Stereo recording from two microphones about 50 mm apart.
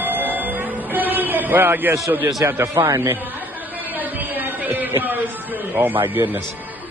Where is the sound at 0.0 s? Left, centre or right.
Right.